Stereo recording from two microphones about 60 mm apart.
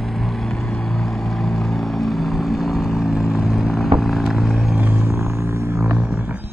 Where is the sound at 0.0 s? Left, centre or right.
Centre.